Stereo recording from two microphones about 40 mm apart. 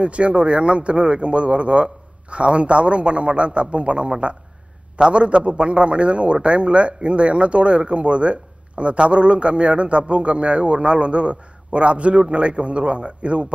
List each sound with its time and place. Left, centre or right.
0.0 s a man's voice: right